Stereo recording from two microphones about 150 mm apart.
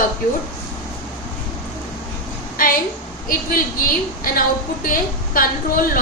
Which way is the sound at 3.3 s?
75° left (ahead or behind).